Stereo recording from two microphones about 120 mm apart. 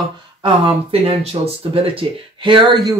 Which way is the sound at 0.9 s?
55° right (ahead or behind).